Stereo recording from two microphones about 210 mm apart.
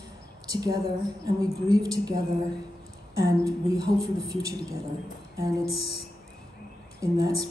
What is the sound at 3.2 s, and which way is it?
Speech, 15° right (ahead or behind).